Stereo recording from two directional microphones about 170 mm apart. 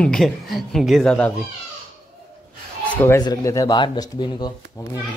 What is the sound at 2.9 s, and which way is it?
Speech, 15° left (ahead or behind).